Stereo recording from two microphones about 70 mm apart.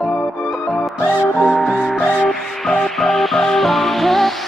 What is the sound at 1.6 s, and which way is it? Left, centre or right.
Music, centre.